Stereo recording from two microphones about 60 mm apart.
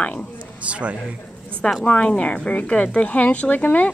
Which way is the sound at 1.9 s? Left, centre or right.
Left.